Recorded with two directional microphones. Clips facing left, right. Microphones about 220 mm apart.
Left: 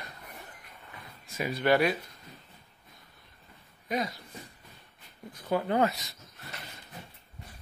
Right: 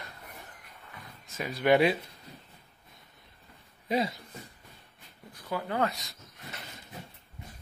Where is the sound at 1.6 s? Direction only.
20° right (ahead or behind).